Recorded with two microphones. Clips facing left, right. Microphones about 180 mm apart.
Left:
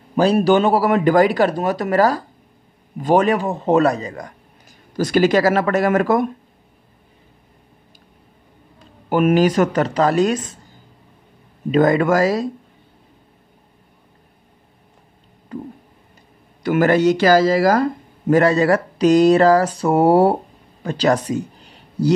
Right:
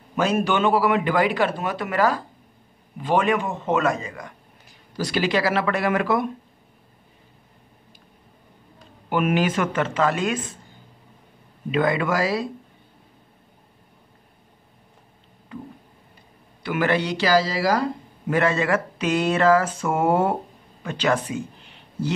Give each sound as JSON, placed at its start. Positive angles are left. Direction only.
{"t": 0.1, "sound": "speech", "side_deg": 35}
{"t": 9.1, "sound": "speech", "side_deg": 40}
{"t": 11.7, "sound": "speech", "side_deg": 40}
{"t": 15.5, "sound": "a sound", "side_deg": 40}
{"t": 16.6, "sound": "speech", "side_deg": 45}